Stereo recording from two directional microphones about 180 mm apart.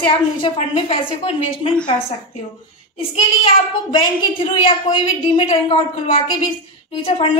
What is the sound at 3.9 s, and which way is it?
A woman's voice, 30° left (ahead or behind).